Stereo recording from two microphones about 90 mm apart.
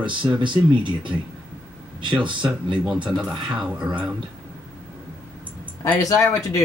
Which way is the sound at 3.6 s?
10° right (ahead or behind).